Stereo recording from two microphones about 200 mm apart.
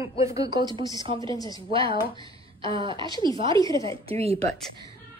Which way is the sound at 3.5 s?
15° left (ahead or behind).